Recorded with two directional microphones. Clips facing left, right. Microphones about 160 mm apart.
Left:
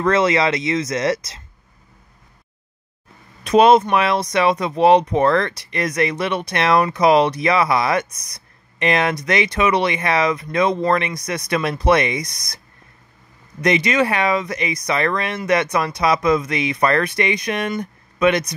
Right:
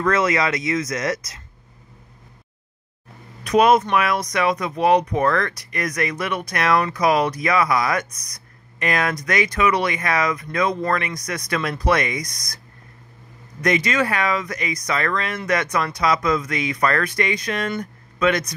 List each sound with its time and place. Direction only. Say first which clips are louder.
0.0 s speech: left 3 dB; 25° left (ahead or behind)
3.4 s speech: left 3 dB; 25° left (ahead or behind)
13.6 s speech: left 3 dB; 20° left (ahead or behind)